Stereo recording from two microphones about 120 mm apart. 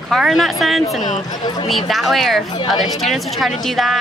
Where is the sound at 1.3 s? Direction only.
35° left (ahead or behind).